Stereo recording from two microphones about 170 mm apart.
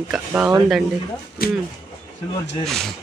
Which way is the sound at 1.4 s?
60° left (ahead or behind).